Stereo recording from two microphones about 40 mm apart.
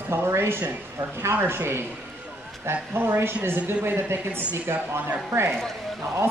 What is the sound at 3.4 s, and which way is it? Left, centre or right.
Speech, right.